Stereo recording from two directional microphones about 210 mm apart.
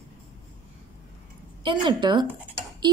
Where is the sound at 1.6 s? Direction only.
20° right (ahead or behind).